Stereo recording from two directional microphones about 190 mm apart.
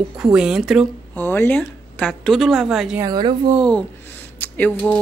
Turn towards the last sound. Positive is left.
turn(degrees=10)  # may be behind; listen again after turning